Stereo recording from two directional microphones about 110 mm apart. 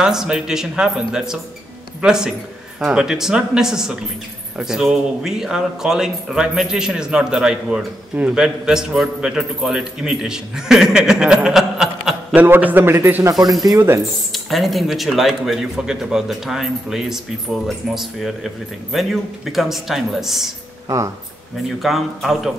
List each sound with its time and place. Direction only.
0.0 s a man's voice: 5° right (ahead or behind)
12.4 s a man's voice: 15° right (ahead or behind)
13.5 s a man's voice: centre (ahead or behind)
13.7 s a man's voice: 25° right (ahead or behind)
14.3 s a man's voice: centre (ahead or behind)
21.8 s a man's voice: centre (ahead or behind)